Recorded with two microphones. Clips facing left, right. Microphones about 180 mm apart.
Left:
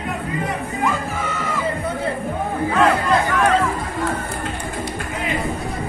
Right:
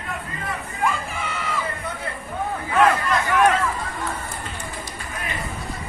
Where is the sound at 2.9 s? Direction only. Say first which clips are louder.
Left 3 dB; 30° left (ahead or behind).